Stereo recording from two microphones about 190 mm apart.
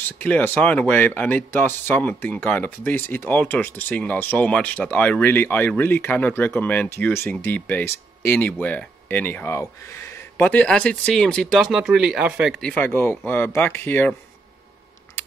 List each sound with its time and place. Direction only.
0.2 s speech: 5° left (ahead or behind)